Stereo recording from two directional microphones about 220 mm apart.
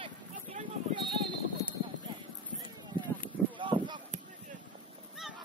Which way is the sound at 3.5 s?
20° right (ahead or behind).